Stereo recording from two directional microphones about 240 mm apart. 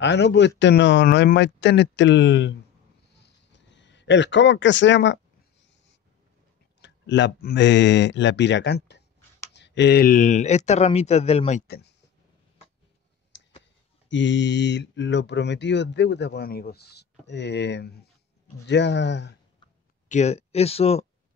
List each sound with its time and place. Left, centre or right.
0.0 s speech: left
3.2 s a sound: left
6.8 s speech: left
11.6 s speech: left
13.3 s a sound: left
14.0 s speech: left
20.1 s speech: left